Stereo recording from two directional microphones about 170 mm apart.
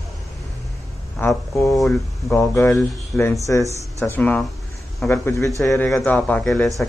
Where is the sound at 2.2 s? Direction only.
15° left (ahead or behind).